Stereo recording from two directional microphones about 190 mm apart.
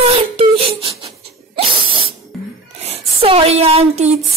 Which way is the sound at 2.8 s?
30° right (ahead or behind).